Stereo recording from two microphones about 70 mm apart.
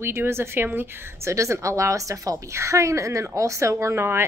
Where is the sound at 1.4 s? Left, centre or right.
Right.